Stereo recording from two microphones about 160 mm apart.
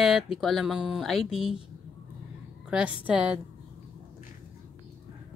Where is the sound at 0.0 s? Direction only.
Centre (ahead or behind).